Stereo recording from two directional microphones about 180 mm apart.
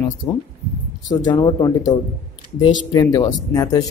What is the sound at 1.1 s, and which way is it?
Speech, 25° left (ahead or behind).